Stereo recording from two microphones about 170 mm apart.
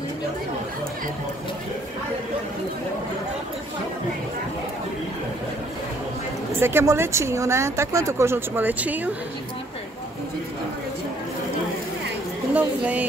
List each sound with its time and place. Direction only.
6.6 s speech: 15° right (ahead or behind)
12.5 s speech: 10° right (ahead or behind)